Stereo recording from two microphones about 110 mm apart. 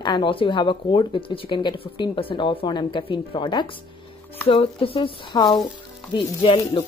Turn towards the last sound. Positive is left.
turn(degrees=50)  # may be behind; listen again after turning